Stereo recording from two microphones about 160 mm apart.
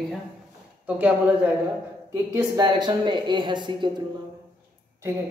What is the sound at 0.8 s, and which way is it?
A man's voice, 10° right (ahead or behind).